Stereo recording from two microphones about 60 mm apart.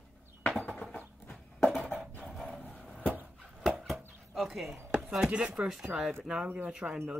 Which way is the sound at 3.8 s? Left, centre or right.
Centre.